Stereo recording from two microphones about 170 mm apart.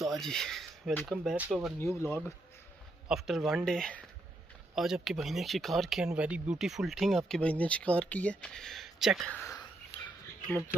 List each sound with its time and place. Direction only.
0.0 s speech: centre (ahead or behind)
1.8 s speech: 15° left (ahead or behind)
3.1 s speech: centre (ahead or behind)
9.3 s speech: 15° left (ahead or behind)